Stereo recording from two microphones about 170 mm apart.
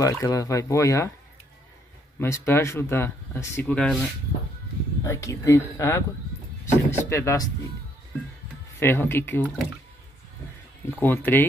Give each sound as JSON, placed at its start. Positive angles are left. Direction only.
{"t": 0.0, "sound": "speech", "side_deg": 20}
{"t": 2.1, "sound": "speech", "side_deg": 15}
{"t": 5.0, "sound": "speech", "side_deg": 15}
{"t": 8.7, "sound": "speech", "side_deg": 15}
{"t": 10.9, "sound": "speech", "side_deg": 10}